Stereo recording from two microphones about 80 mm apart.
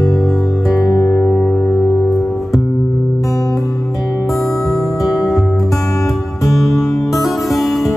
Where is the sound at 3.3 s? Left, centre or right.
Left.